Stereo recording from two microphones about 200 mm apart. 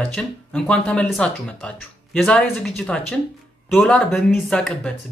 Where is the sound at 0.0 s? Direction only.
5° left (ahead or behind).